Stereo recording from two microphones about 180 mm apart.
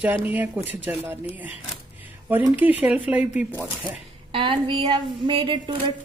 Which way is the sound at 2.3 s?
10° right (ahead or behind).